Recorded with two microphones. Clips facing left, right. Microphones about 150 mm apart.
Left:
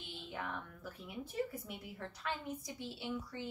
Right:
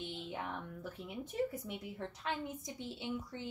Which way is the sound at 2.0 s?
20° right (ahead or behind).